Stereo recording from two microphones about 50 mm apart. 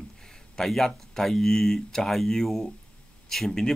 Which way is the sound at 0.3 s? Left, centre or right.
Centre.